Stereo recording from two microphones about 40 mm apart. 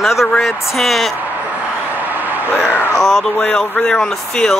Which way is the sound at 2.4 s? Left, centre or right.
Left.